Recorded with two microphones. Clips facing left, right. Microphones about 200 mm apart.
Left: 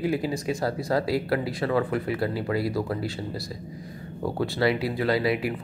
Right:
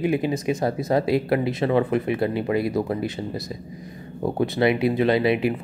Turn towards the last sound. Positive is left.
turn(degrees=-20)  # may be behind; listen again after turning